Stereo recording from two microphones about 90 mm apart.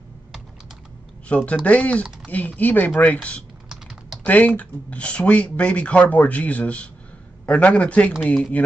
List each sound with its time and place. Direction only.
1.3 s speech: 15° left (ahead or behind)